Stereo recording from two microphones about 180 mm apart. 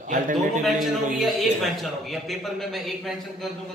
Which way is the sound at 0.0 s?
50° right (ahead or behind).